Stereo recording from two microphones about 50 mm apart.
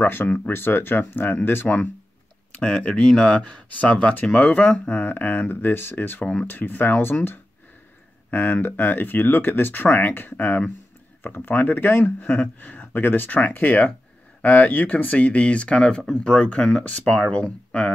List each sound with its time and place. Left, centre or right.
0.0 s speech: left
2.6 s speech: centre
5.0 s speech: left
8.3 s speech: left